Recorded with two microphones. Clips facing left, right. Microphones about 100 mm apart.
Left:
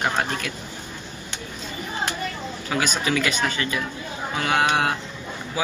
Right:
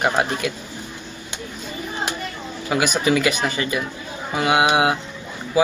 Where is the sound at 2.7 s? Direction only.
15° right (ahead or behind).